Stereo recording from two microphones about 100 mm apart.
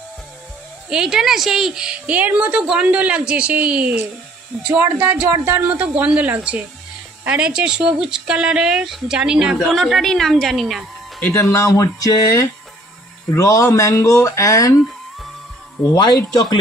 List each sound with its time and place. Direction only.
0.8 s speech: 5° right (ahead or behind)
4.7 s speech: 25° right (ahead or behind); by 11.2 s centre (ahead or behind)
11.5 s speech: 35° left (ahead or behind)